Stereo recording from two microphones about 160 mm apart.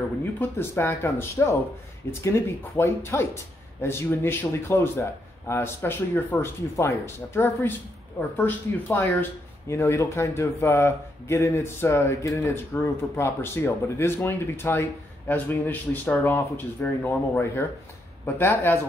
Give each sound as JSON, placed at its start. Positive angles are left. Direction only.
{"t": 0.4, "sound": "speech", "side_deg": 15}